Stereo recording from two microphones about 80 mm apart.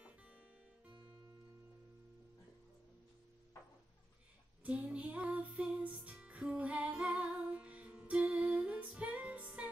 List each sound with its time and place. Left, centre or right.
0.0 s music: centre
4.6 s music: centre